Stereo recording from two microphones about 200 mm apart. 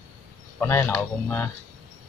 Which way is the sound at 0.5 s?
15° left (ahead or behind).